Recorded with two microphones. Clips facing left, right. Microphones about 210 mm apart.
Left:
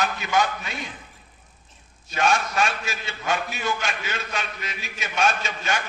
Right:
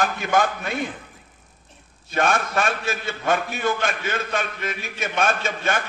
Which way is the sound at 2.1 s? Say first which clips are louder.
Right 1 dB; 55° right (ahead or behind).